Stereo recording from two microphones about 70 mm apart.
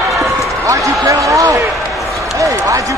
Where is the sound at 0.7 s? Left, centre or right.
Right.